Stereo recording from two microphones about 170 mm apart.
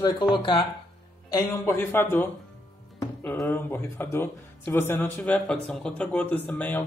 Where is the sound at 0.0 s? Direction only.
25° left (ahead or behind).